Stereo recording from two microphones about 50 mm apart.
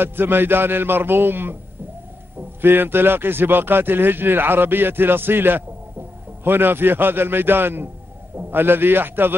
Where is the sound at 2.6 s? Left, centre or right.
Right.